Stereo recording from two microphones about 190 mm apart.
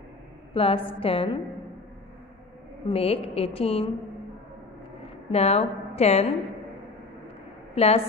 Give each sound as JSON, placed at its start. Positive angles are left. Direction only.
{"t": 0.6, "sound": "a woman's voice", "side_deg": 30}
{"t": 2.9, "sound": "a woman's voice", "side_deg": 30}
{"t": 5.3, "sound": "a woman's voice", "side_deg": 35}
{"t": 7.7, "sound": "a woman's voice", "side_deg": 30}